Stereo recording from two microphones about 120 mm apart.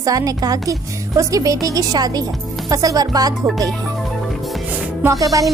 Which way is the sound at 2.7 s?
30° right (ahead or behind).